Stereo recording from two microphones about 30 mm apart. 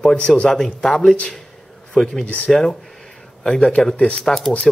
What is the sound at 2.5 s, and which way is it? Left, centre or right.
Speech, centre.